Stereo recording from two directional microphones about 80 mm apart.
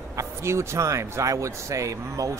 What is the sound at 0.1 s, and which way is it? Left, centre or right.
Speech, right.